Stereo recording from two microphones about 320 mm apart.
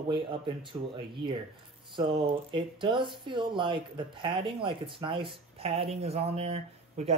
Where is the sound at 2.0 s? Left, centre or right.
Centre.